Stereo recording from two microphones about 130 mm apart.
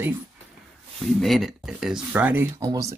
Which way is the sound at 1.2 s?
Centre (ahead or behind).